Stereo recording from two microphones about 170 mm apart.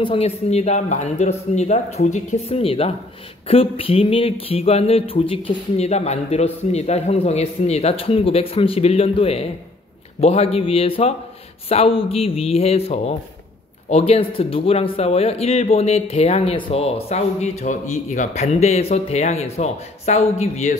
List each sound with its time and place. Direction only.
0.0 s speech: 35° left (ahead or behind)